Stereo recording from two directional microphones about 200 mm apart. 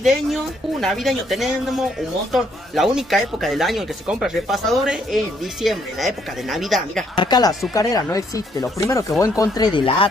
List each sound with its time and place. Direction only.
0.0 s speech: centre (ahead or behind)
7.2 s speech: 20° left (ahead or behind)